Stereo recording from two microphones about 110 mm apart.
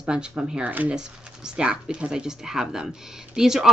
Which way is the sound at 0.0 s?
10° right (ahead or behind).